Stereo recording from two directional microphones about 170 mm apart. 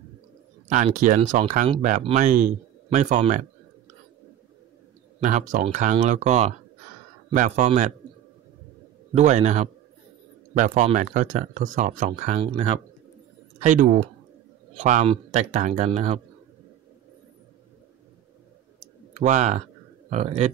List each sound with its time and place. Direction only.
0.9 s speech: 50° right (ahead or behind)
5.2 s speech: 50° right (ahead or behind)
9.1 s speech: 40° right (ahead or behind)
19.1 s speech: 45° right (ahead or behind)